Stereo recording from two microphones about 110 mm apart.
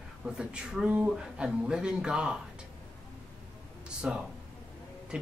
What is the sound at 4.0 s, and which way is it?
Speech, 10° right (ahead or behind).